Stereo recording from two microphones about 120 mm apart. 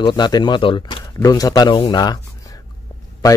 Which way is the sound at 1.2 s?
30° left (ahead or behind).